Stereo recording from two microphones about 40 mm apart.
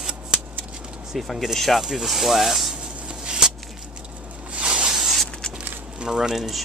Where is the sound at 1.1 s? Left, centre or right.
Centre.